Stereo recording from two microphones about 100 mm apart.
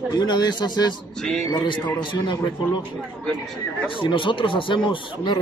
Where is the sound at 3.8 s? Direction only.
60° left (ahead or behind).